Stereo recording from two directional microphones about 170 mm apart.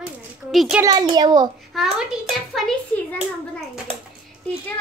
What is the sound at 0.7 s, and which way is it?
Speech, 20° right (ahead or behind).